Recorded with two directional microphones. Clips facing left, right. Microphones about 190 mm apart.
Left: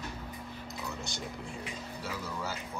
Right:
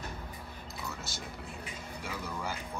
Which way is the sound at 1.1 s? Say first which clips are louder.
Left 3 dB; 5° right (ahead or behind).